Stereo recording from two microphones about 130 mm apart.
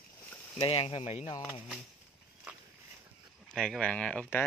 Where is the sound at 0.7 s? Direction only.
45° left (ahead or behind).